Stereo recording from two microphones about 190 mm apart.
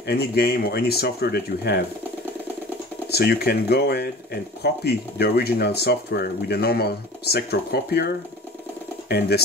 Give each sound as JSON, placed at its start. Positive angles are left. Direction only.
{"t": 0.0, "sound": "speech", "side_deg": 55}
{"t": 3.1, "sound": "speech", "side_deg": 55}